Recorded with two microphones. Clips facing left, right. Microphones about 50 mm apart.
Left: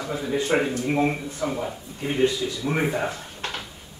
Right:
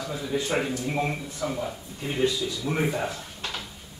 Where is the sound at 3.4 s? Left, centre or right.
Left.